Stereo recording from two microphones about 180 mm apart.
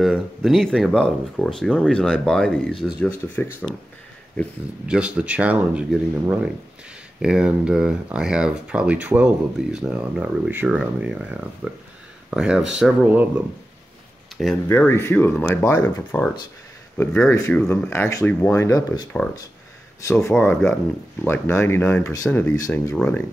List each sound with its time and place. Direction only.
0.0 s speech: centre (ahead or behind)
4.8 s speech: 5° right (ahead or behind)
14.7 s speech: 15° left (ahead or behind)
17.3 s speech: 15° left (ahead or behind)